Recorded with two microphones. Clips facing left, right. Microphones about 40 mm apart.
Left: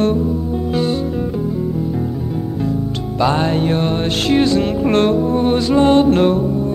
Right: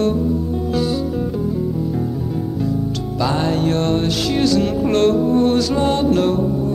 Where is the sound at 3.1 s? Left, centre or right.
Left.